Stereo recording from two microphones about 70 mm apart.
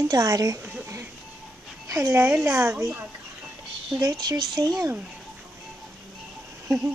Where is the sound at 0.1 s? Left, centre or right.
Right.